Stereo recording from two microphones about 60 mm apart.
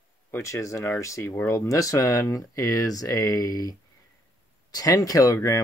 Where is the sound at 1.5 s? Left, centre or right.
Left.